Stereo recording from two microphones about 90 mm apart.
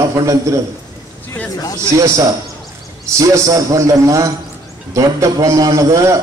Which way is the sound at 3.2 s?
35° right (ahead or behind).